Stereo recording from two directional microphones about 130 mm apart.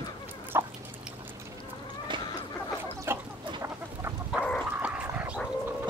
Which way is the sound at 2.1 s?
35° right (ahead or behind).